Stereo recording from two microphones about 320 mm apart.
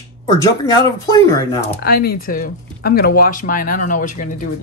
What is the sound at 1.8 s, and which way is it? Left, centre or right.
Speech, left.